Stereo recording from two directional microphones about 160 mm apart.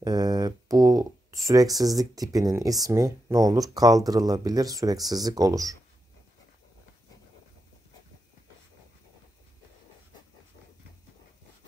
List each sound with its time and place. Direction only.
0.0 s speech: 25° right (ahead or behind)